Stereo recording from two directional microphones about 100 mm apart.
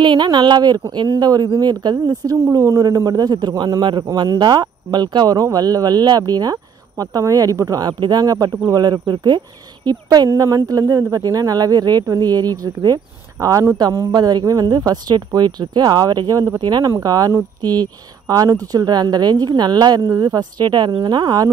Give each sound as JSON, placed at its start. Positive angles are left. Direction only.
{"t": 0.0, "sound": "speech", "side_deg": -50}